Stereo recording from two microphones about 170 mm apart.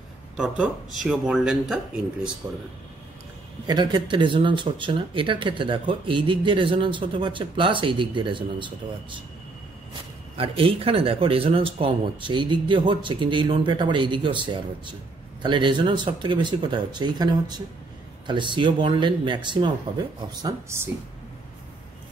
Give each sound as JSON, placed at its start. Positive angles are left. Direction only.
{"t": 0.4, "sound": "speech", "side_deg": -5}
{"t": 2.4, "sound": "speech", "side_deg": -20}
{"t": 3.6, "sound": "speech", "side_deg": -25}
{"t": 10.3, "sound": "speech", "side_deg": -35}